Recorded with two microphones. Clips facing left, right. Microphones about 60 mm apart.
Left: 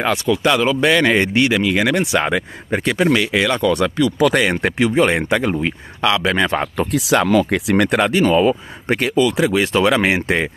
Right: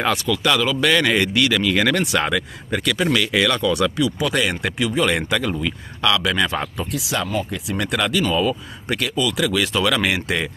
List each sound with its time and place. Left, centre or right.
0.1 s speech: left
2.7 s speech: left
3.6 s speech: left
4.5 s speech: left
5.1 s speech: left
6.8 s speech: left
8.0 s speech: left
9.4 s speech: left